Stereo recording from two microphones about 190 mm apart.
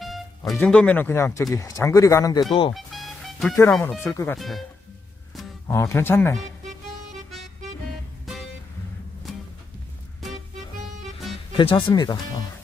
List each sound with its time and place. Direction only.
0.0 s speech: centre (ahead or behind); by 2.4 s 15° left (ahead or behind)
2.7 s music: centre (ahead or behind)
3.7 s speech: centre (ahead or behind)
4.0 s speech: 10° left (ahead or behind)
4.4 s speech: centre (ahead or behind)
5.7 s speech: 15° left (ahead or behind)
11.5 s speech: 25° left (ahead or behind)